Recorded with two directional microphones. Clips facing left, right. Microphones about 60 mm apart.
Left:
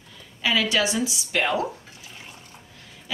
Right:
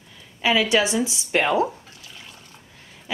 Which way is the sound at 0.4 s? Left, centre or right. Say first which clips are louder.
Right 3 dB; right.